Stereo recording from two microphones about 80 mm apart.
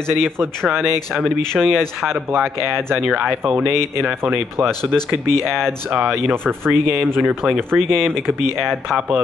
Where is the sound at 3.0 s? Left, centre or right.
Centre.